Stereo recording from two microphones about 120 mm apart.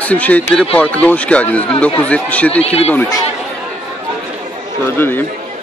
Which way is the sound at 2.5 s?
60° left (ahead or behind).